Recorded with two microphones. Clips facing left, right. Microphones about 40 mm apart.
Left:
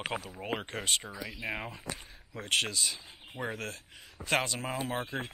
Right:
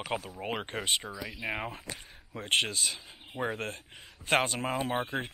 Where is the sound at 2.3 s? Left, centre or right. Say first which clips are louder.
Right 2 dB; right.